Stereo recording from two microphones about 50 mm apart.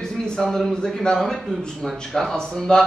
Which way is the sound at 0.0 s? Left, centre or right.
Centre.